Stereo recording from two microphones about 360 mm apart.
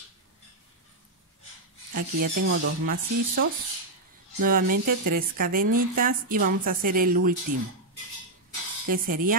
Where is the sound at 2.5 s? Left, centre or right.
Right.